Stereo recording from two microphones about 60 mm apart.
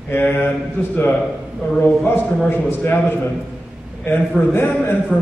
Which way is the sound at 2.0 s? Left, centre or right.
Left.